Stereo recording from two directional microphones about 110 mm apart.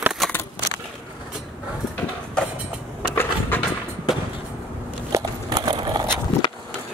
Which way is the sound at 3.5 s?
15° left (ahead or behind).